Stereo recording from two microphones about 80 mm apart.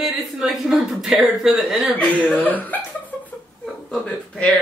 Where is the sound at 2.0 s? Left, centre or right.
Centre.